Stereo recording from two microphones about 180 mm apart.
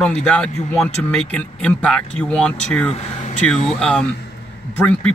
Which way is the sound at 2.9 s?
40° left (ahead or behind).